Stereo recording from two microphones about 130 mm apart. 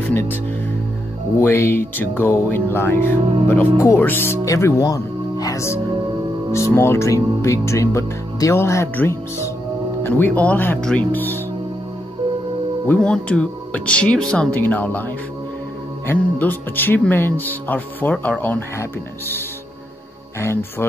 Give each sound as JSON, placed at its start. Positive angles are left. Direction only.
{"t": 1.4, "sound": "speech", "side_deg": 20}
{"t": 3.2, "sound": "speech", "side_deg": -40}
{"t": 3.8, "sound": "speech", "side_deg": 20}
{"t": 12.8, "sound": "speech", "side_deg": 10}
{"t": 16.1, "sound": "speech", "side_deg": 15}